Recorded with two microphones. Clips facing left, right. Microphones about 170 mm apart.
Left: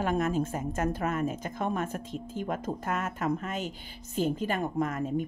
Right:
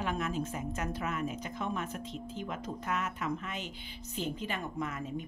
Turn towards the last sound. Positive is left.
turn(degrees=50)  # may be behind; listen again after turning